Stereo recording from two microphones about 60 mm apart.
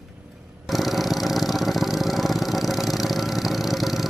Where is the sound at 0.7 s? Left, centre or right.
Centre.